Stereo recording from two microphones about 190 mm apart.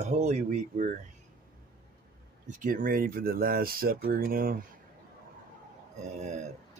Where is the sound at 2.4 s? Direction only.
45° right (ahead or behind).